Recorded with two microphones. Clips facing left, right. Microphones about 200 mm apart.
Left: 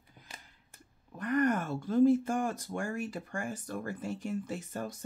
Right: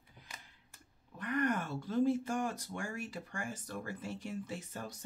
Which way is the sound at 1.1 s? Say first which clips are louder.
Left 5 dB; 45° left (ahead or behind).